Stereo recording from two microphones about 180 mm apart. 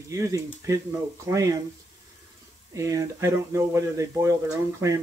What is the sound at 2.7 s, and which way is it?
Speech, 15° right (ahead or behind).